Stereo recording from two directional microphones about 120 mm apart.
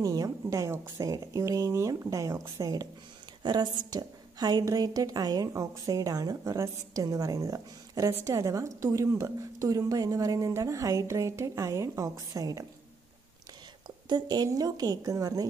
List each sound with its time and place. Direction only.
0.0 s a woman's voice: 30° right (ahead or behind)
13.8 s a woman's voice: 35° right (ahead or behind)